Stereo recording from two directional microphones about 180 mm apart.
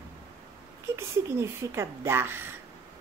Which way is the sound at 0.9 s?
15° right (ahead or behind).